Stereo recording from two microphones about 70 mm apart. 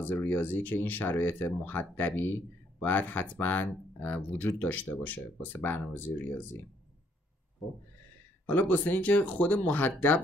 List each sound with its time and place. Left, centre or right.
0.0 s speech: left
7.6 s a sound: centre
8.5 s speech: left